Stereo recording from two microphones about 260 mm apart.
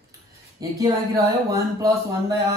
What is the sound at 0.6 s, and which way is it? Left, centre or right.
Speech, centre.